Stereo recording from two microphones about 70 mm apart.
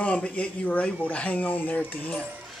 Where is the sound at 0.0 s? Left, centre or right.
Centre.